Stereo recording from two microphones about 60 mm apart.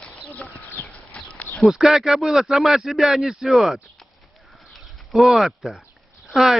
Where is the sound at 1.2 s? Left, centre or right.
Left.